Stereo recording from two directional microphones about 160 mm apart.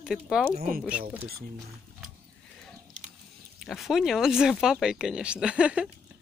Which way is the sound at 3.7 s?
Centre (ahead or behind).